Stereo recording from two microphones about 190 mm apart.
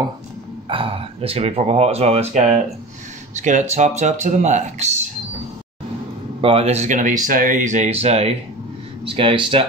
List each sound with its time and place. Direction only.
0.7 s speech: 30° right (ahead or behind)
6.4 s speech: 30° right (ahead or behind)